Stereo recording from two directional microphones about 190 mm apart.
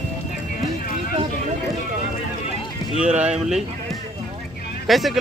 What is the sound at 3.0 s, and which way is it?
Speech, 5° right (ahead or behind).